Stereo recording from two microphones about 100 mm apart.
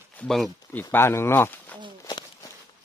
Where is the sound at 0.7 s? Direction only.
25° left (ahead or behind).